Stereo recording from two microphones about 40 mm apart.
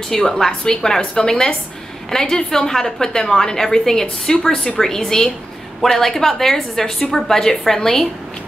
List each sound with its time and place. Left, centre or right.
0.1 s a woman's voice: centre